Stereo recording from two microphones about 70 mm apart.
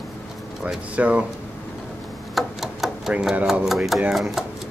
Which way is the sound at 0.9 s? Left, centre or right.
Centre.